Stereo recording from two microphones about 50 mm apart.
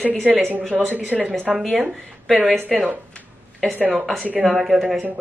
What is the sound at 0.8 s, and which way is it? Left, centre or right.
Speech, right.